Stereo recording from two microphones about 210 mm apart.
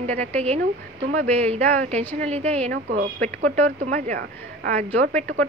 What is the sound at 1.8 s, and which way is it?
Speech, 30° right (ahead or behind).